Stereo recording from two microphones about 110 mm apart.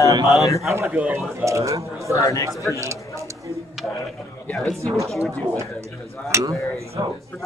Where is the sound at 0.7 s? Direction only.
25° right (ahead or behind).